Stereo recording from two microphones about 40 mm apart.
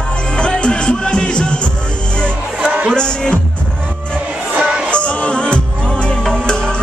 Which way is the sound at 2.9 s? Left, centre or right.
Left.